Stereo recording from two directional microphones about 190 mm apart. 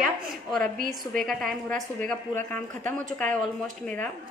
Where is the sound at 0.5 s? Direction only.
Centre (ahead or behind).